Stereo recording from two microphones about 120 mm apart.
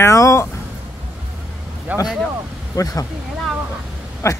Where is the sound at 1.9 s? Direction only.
15° right (ahead or behind).